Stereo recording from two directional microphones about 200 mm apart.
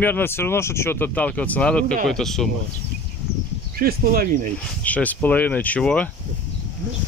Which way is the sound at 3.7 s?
50° right (ahead or behind).